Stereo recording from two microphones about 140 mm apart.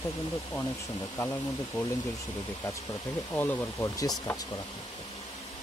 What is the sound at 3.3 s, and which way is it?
Speech, 15° left (ahead or behind).